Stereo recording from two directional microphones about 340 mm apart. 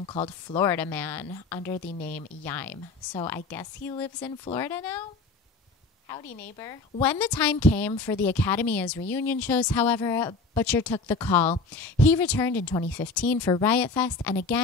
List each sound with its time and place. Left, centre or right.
0.0 s a woman's voice: centre
2.7 s a woman's voice: left
3.3 s a woman's voice: centre
6.0 s a woman's voice: centre